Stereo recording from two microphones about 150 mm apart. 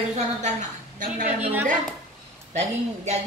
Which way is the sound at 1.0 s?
60° right (ahead or behind).